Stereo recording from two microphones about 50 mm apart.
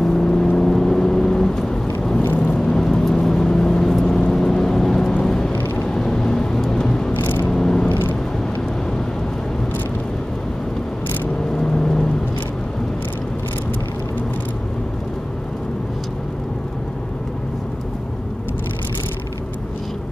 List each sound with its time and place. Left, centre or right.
0.0 s vehicle: centre
2.3 s vehicle: left
2.6 s vehicle: centre
7.9 s vehicle: left
11.5 s vehicle: centre